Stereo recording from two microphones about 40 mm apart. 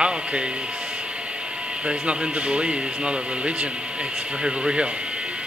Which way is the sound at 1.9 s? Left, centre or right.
Right.